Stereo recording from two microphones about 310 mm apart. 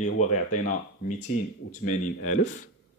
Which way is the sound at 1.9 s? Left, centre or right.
Left.